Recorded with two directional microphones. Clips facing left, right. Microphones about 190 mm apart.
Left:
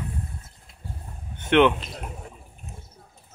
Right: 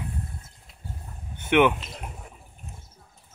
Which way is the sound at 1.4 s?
10° right (ahead or behind).